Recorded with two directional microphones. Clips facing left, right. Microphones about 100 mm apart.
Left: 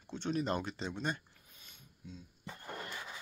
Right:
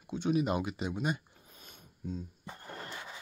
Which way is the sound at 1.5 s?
45° right (ahead or behind).